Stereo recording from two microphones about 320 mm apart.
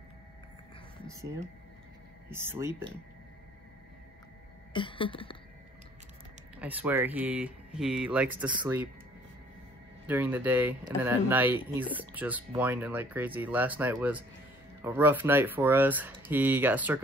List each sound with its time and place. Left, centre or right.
2.2 s speech: centre
4.7 s a sound: centre
6.6 s speech: centre
10.0 s speech: centre